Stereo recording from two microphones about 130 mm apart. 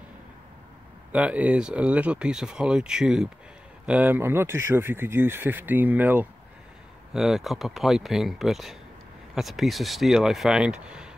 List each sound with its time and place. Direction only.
1.1 s speech: 10° right (ahead or behind)
7.2 s speech: 5° right (ahead or behind)